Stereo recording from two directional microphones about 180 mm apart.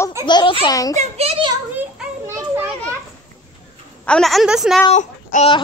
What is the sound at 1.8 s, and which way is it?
Children playing, 15° right (ahead or behind).